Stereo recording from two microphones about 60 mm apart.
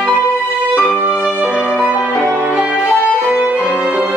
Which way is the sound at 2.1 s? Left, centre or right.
Centre.